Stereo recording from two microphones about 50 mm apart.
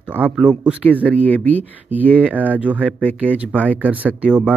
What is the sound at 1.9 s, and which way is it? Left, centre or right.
Speech, right.